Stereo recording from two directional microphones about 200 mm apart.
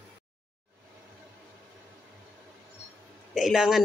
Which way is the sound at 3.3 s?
Centre (ahead or behind).